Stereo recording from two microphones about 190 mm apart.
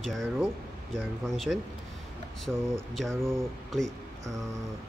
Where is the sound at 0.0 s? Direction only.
Centre (ahead or behind).